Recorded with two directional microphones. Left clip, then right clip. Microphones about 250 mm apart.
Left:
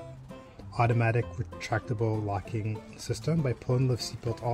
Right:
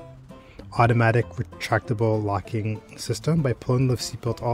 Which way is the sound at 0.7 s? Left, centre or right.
Right.